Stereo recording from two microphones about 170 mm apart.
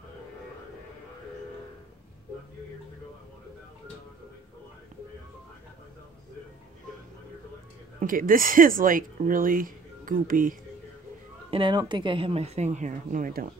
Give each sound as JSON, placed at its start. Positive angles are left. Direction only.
{"t": 8.0, "sound": "speech", "side_deg": -55}
{"t": 11.5, "sound": "speech", "side_deg": -25}